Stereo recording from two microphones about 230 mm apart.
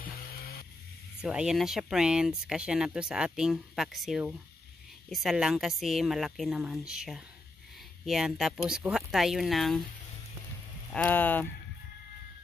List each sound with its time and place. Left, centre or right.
0.0 s music: left
1.2 s speech: centre
10.9 s speech: centre